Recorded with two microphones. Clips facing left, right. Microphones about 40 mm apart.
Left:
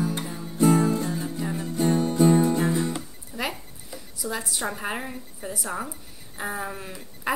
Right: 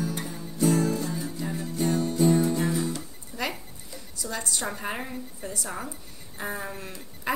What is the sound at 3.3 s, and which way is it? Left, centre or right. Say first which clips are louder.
A woman's voice: left 1 dB; centre.